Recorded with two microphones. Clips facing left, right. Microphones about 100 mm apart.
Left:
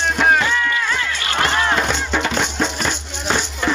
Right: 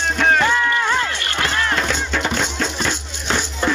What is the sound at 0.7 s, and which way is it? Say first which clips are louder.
Music: right 3 dB; 35° right (ahead or behind).